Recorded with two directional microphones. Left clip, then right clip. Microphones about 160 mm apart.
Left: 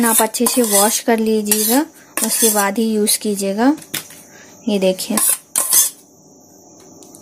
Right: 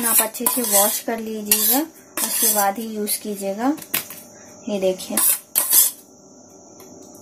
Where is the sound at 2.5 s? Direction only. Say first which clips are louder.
Left 4 dB; 65° left (ahead or behind).